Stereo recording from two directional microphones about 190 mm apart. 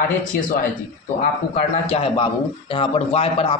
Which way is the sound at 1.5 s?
30° left (ahead or behind).